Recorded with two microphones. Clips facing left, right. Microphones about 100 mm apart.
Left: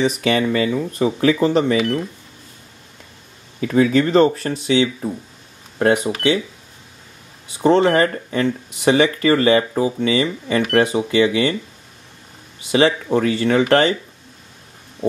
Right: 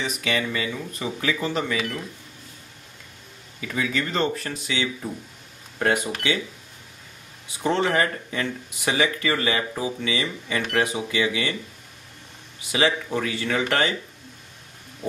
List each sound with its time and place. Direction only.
0.0 s speech: 40° left (ahead or behind)
3.6 s speech: 40° left (ahead or behind); by 6.1 s 20° left (ahead or behind)
7.6 s speech: 30° left (ahead or behind)
12.7 s speech: 30° left (ahead or behind)